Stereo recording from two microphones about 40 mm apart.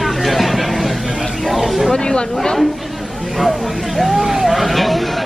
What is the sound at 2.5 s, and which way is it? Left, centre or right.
Chatter, centre.